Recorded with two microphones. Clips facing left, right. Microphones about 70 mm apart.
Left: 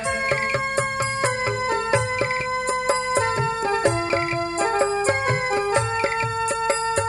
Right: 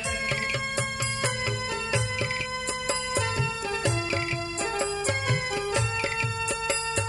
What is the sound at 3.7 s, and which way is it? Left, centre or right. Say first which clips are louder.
Music: left 8 dB; left.